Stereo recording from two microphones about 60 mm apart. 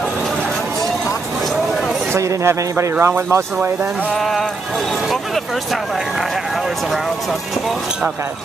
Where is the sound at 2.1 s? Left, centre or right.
Right.